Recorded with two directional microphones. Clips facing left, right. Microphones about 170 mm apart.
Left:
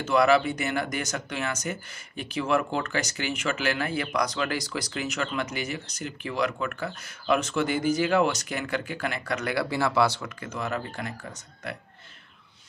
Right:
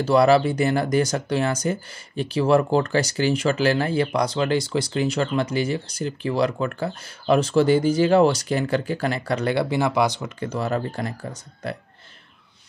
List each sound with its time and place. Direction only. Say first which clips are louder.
0.0 s speech: right 5 dB; 35° right (ahead or behind); by 10.3 s 15° right (ahead or behind)
10.4 s speech: right 7 dB; 35° right (ahead or behind)